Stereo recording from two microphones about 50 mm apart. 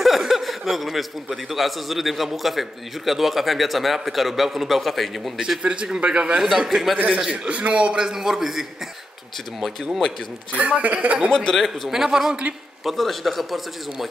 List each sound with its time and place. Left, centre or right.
0.0 s a man's voice: centre
5.6 s a man's voice: right
6.7 s a man's voice: centre
7.4 s a man's voice: right; by 10.0 s centre
10.5 s a man's voice: right
11.3 s a man's voice: centre
11.9 s a man's voice: centre